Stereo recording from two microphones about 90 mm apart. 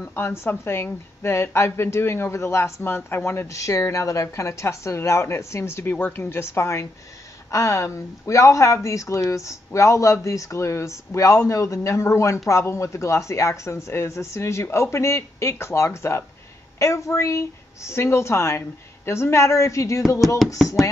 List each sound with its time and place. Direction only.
0.1 s speech: 25° left (ahead or behind)